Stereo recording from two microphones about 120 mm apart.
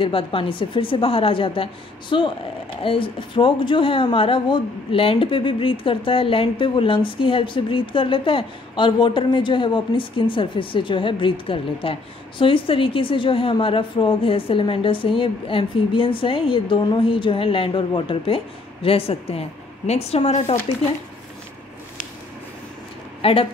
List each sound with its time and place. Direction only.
0.0 s a woman's voice: 45° left (ahead or behind)
23.2 s speech: 55° left (ahead or behind)